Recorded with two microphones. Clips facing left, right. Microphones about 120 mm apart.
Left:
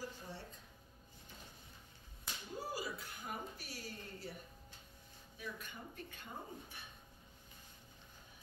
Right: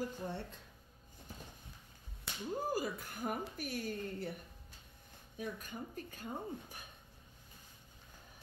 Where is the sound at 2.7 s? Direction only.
50° right (ahead or behind).